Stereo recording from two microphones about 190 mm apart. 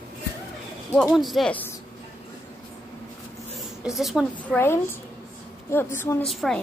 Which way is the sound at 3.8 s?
Centre (ahead or behind).